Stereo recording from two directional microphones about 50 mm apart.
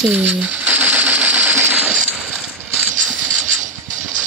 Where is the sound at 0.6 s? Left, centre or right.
Right.